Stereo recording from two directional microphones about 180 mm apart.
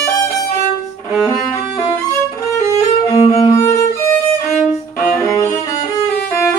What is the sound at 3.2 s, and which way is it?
Music, 35° left (ahead or behind).